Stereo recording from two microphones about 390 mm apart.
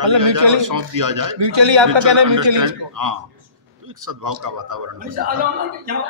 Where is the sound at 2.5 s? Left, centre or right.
Right.